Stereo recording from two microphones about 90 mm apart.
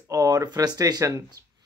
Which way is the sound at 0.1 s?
40° right (ahead or behind).